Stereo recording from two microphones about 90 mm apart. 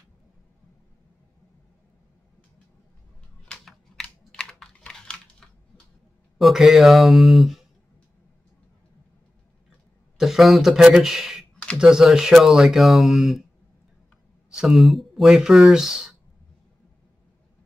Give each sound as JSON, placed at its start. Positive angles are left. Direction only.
{"t": 3.5, "sound": "typing", "side_deg": 5}
{"t": 6.3, "sound": "speech", "side_deg": -5}
{"t": 10.1, "sound": "a man's voice", "side_deg": -5}
{"t": 14.5, "sound": "speech", "side_deg": -5}